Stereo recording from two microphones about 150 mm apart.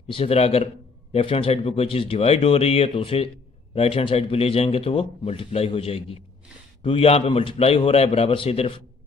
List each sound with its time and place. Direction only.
0.1 s speech: 40° left (ahead or behind)